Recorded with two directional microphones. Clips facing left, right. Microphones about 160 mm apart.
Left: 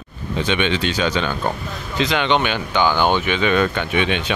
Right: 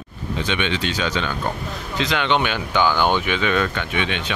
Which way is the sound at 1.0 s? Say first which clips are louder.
Left 3 dB; 30° left (ahead or behind).